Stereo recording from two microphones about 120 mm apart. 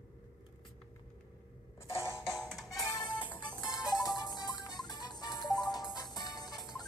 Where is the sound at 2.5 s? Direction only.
Centre (ahead or behind).